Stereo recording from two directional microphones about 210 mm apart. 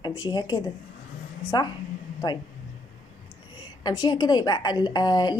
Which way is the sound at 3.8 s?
20° left (ahead or behind).